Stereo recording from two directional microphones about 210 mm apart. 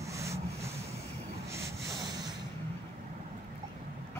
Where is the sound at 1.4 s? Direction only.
15° right (ahead or behind).